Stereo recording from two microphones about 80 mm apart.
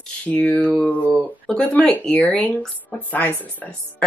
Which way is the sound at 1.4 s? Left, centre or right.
Centre.